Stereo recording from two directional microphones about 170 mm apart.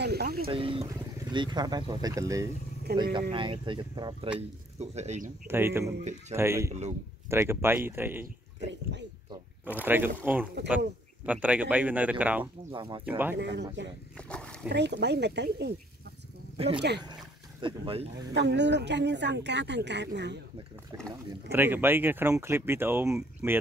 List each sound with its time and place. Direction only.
0.0 s wild animals: 70° right (ahead or behind)
0.5 s speech: 30° right (ahead or behind)
5.5 s speech: 15° right (ahead or behind)
6.7 s speech: 40° right (ahead or behind)
7.2 s speech: 15° right (ahead or behind)
8.5 s a sound: 90° right
9.8 s speech: 10° right (ahead or behind)
12.7 s speech: 30° right (ahead or behind)
13.4 s speech: 90° right
14.1 s a sound: 5° left (ahead or behind)
14.7 s speech: 80° right
16.5 s speech: 35° right (ahead or behind)
18.3 s speech: 90° right
20.9 s speech: 20° right (ahead or behind)